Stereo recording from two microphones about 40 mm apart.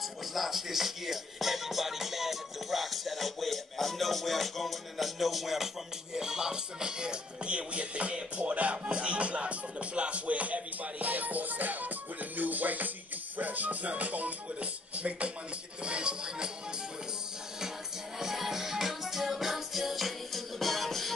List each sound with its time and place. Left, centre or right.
0.0 s music: centre
6.1 s music: centre
18.2 s music: centre